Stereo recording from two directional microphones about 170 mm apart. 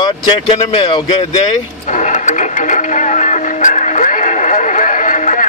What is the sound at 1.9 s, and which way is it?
Music, 45° left (ahead or behind).